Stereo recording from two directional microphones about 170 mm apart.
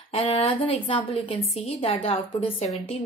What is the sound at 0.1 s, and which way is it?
A woman's voice, 35° left (ahead or behind).